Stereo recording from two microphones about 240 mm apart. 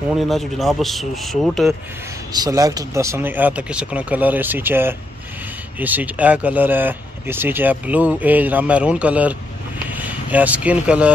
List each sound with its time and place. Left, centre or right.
0.3 s speech: centre
2.3 s speech: centre